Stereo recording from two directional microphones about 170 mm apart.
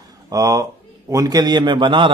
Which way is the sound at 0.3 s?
20° right (ahead or behind).